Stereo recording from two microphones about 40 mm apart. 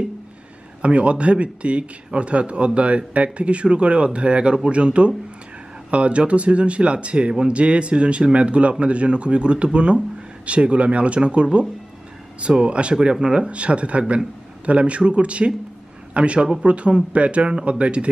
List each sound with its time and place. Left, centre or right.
0.8 s a man's voice: right